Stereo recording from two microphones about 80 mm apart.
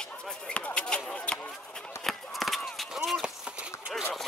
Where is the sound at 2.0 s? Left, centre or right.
Centre.